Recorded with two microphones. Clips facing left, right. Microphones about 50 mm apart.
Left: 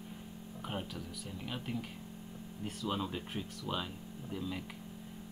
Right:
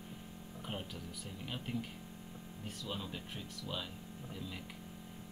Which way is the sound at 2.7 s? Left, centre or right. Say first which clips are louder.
Left 6 dB; left.